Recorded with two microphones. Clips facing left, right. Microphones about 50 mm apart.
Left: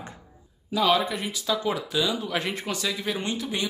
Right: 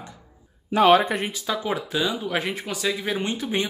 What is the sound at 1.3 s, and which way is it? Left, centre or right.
Speech, right.